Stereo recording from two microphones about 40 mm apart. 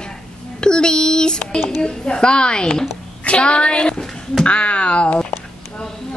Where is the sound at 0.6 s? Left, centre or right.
Left.